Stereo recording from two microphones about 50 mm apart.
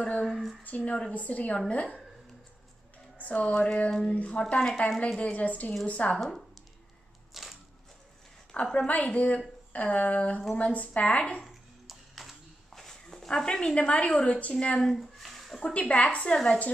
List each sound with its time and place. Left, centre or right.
0.2 s speech: centre
0.7 s a woman's voice: left
3.3 s a woman's voice: left
4.6 s a woman's voice: centre
7.3 s crushing: centre
8.7 s a woman's voice: left
11.4 s a sound: centre
13.3 s a woman's voice: centre
14.8 s a sound: centre
15.6 s a woman's voice: left